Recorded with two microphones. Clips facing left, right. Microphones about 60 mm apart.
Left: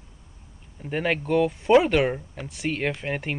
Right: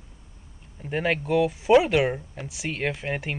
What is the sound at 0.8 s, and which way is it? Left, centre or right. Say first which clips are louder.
Speech: even; centre.